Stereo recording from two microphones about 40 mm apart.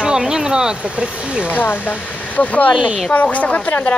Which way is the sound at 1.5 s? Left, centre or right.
Left.